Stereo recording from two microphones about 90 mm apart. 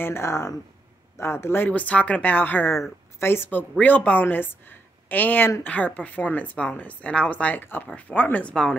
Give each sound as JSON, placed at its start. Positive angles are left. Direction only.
{"t": 0.0, "sound": "a woman's voice", "side_deg": 30}
{"t": 1.7, "sound": "a woman's voice", "side_deg": 15}